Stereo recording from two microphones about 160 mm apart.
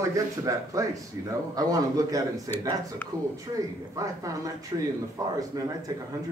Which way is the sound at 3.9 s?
20° right (ahead or behind).